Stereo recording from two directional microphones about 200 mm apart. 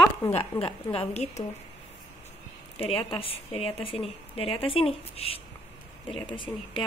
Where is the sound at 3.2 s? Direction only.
30° left (ahead or behind).